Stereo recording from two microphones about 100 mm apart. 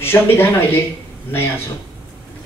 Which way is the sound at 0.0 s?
25° left (ahead or behind).